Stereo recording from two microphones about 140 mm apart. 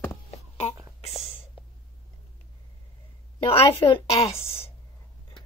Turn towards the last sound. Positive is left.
turn(degrees=20)  # may be behind; listen again after turning